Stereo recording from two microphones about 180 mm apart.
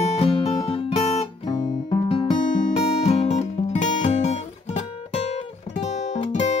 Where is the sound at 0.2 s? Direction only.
30° left (ahead or behind).